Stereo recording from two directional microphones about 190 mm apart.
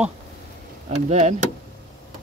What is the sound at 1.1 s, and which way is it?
Speech, 35° right (ahead or behind).